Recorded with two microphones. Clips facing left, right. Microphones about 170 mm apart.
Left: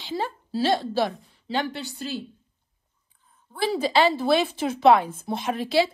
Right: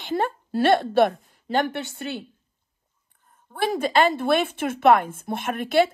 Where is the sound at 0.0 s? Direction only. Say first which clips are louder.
Right 4 dB; 55° right (ahead or behind).